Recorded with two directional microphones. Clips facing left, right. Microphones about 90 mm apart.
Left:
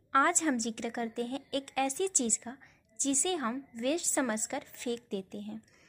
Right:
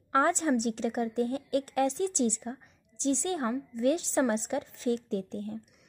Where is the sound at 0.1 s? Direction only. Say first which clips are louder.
Right 2 dB; 20° right (ahead or behind).